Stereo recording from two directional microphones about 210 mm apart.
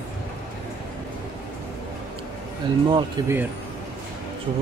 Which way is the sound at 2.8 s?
20° right (ahead or behind).